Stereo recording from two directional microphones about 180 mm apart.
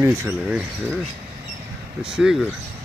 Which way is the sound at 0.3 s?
5° right (ahead or behind).